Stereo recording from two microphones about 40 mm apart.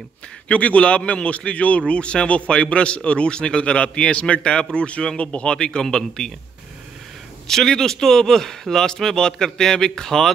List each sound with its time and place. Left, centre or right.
0.5 s a man's voice: left; by 6.3 s centre
7.4 s a man's voice: centre